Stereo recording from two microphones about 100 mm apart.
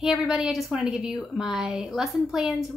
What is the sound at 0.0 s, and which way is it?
A woman's voice, 5° right (ahead or behind).